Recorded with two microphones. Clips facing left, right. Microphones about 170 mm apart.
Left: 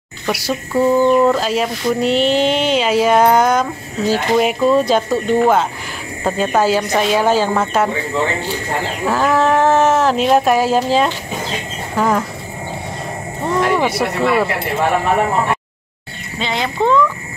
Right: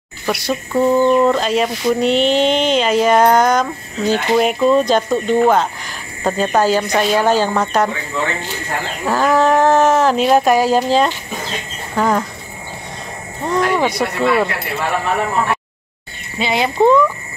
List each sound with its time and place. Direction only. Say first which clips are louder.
0.3 s speech: even; 5° left (ahead or behind)
9.0 s speech: right 1 dB; centre (ahead or behind)
13.5 s speech: even; 5° left (ahead or behind)
16.3 s a child's voice: right 4 dB; 10° right (ahead or behind)